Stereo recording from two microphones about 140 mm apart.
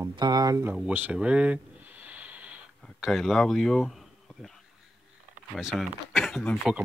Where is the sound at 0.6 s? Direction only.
10° right (ahead or behind).